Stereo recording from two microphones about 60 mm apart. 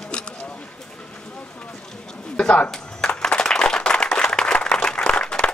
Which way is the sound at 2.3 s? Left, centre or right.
Centre.